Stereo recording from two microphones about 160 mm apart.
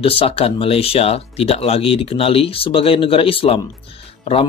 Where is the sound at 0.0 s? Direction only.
35° left (ahead or behind).